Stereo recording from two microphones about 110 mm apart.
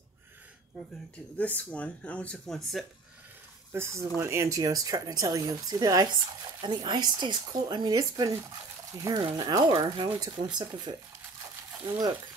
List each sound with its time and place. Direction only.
1.4 s speech: 15° left (ahead or behind)
3.7 s speech: 25° right (ahead or behind)